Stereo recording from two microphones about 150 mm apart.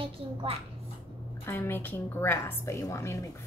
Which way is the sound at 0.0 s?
35° right (ahead or behind).